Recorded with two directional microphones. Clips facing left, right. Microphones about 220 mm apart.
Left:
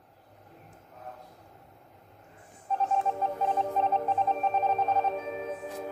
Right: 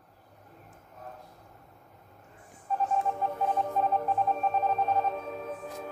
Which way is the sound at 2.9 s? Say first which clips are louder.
Left 1 dB; 25° left (ahead or behind).